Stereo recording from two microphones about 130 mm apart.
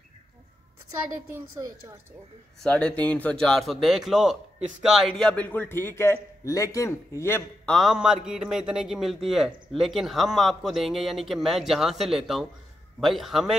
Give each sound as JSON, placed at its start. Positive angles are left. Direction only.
{"t": 1.3, "sound": "a woman's voice", "side_deg": -25}
{"t": 2.6, "sound": "a man's voice", "side_deg": 5}
{"t": 7.6, "sound": "a man's voice", "side_deg": 0}